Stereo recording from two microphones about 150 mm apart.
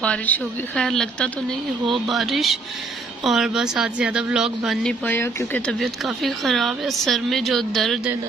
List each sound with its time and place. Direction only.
0.0 s a woman's voice: 10° left (ahead or behind)
5.0 s a woman's voice: 15° left (ahead or behind)
5.8 s a woman's voice: centre (ahead or behind)